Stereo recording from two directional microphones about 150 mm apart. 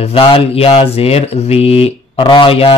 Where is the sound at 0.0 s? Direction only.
40° left (ahead or behind).